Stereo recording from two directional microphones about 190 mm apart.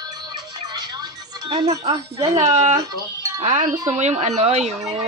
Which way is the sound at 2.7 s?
20° right (ahead or behind).